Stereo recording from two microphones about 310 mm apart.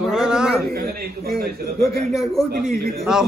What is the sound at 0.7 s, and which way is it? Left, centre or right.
A man's voice, right.